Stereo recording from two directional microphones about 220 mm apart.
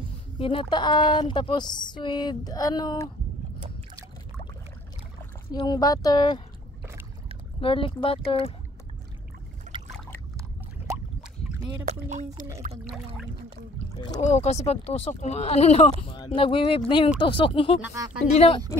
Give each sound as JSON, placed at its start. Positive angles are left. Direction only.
{"t": 0.4, "sound": "speech", "side_deg": 25}
{"t": 5.5, "sound": "speech", "side_deg": 20}
{"t": 7.6, "sound": "speech", "side_deg": 25}
{"t": 9.9, "sound": "trickle", "side_deg": 10}
{"t": 11.8, "sound": "speech", "side_deg": -30}
{"t": 12.8, "sound": "a sound", "side_deg": 0}
{"t": 14.2, "sound": "speech", "side_deg": 30}
{"t": 17.8, "sound": "speech", "side_deg": -15}
{"t": 18.2, "sound": "speech", "side_deg": 30}